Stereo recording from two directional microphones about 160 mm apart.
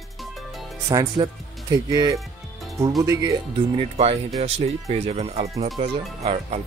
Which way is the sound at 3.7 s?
35° right (ahead or behind).